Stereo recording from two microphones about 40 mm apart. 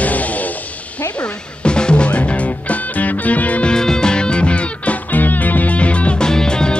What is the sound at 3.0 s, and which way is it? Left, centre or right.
Music, left.